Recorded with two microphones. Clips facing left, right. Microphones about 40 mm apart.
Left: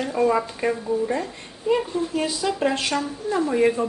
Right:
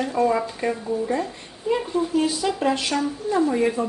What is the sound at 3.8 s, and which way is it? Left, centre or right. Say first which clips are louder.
Speech: left 1 dB; left.